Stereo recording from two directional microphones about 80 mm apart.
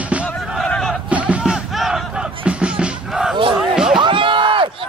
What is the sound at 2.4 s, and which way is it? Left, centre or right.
Music, centre.